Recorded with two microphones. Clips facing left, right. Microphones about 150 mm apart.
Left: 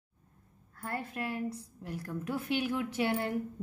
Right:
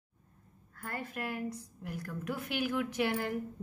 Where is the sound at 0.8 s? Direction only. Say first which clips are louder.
Left 2 dB; 30° left (ahead or behind).